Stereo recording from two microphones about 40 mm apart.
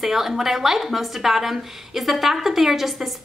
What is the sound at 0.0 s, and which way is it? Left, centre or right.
A woman's voice, centre.